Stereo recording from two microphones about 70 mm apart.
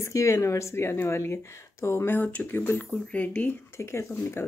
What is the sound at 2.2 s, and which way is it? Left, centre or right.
Speech, left.